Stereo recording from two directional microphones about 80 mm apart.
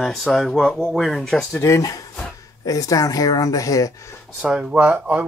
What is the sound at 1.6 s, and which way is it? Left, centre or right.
Speech, left.